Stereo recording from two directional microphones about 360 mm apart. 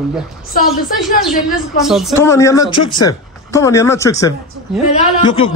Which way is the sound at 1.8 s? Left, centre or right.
Centre.